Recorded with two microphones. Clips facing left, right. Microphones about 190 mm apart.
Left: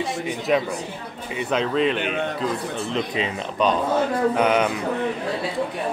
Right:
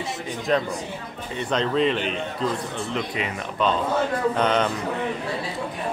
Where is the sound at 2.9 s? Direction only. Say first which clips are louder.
Left 3 dB; 20° left (ahead or behind).